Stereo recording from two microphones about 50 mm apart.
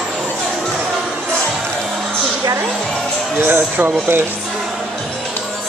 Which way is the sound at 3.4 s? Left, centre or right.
Right.